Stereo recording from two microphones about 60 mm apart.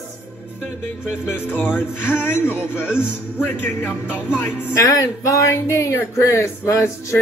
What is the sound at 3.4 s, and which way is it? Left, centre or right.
Speech, left.